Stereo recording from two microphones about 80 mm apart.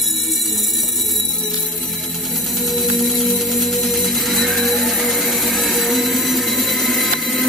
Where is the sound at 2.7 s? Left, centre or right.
Centre.